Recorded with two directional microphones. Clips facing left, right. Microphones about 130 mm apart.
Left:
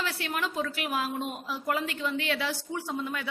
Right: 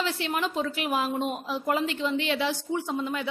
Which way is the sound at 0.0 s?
25° right (ahead or behind).